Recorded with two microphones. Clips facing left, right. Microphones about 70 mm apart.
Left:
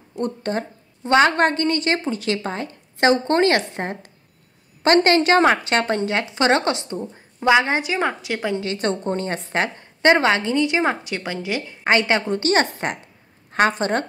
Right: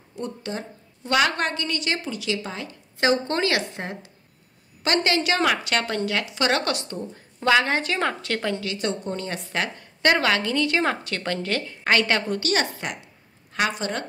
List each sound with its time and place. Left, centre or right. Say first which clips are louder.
0.2 s speech: left 7 dB; left
1.0 s a woman's voice: left 6 dB; left; by 8.5 s centre
8.7 s speech: left 5 dB; left; by 11.6 s centre
11.8 s a woman's voice: left 3 dB; left